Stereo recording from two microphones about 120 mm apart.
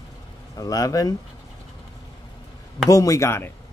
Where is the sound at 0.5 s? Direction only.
30° left (ahead or behind).